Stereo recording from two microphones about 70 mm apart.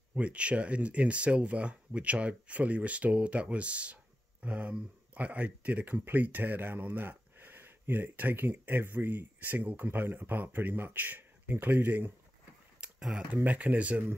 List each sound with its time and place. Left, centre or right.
0.1 s speech: centre
12.8 s a sound: centre
13.3 s speech: right